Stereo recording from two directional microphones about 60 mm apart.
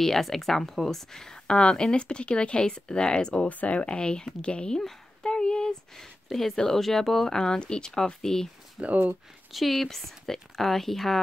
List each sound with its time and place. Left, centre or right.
0.0 s speech: centre
8.8 s speech: right
9.5 s speech: centre